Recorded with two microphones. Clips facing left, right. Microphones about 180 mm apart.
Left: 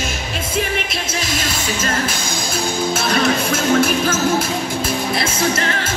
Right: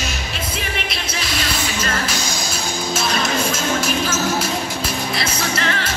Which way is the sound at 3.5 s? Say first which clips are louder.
Left 5 dB; 55° left (ahead or behind).